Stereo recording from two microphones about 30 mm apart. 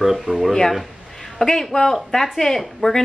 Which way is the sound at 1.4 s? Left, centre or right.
Centre.